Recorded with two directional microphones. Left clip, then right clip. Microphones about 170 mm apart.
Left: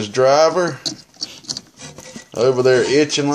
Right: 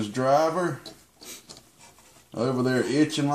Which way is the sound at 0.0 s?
45° left (ahead or behind).